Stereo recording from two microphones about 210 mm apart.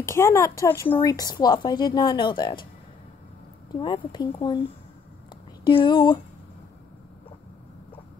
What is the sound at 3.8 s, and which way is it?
Speech, 20° left (ahead or behind).